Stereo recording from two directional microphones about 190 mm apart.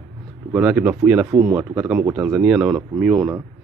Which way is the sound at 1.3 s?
15° right (ahead or behind).